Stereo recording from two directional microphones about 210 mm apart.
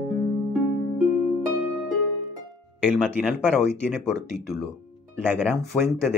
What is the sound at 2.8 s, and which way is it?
Speech, 5° right (ahead or behind).